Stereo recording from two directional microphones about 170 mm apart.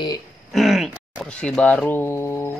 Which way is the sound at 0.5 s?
Centre (ahead or behind).